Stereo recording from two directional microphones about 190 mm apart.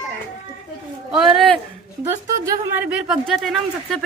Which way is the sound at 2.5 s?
10° right (ahead or behind).